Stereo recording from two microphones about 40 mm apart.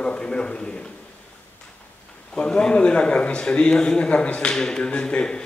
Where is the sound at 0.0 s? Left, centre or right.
Left.